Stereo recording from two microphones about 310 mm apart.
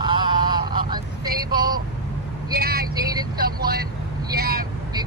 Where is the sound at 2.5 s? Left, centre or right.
Right.